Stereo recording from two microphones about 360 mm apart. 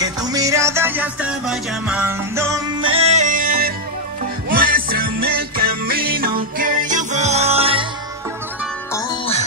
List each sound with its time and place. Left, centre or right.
0.0 s music: centre